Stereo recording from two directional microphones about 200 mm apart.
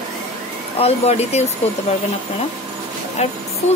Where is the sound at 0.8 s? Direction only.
30° left (ahead or behind).